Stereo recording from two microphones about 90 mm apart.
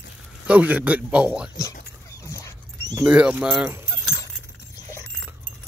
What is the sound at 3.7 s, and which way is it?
Clip-clop, 25° right (ahead or behind).